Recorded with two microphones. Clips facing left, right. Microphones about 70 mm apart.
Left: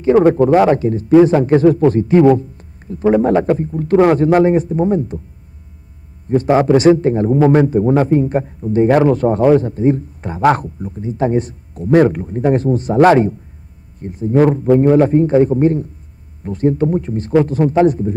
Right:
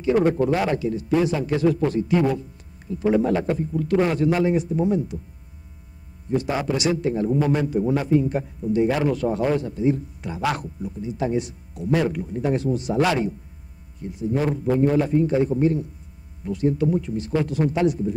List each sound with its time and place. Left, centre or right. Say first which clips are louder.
0.0 s a man's voice: left 9 dB; left
6.2 s a man's voice: left 11 dB; left
6.9 s a man's voice: left 10 dB; left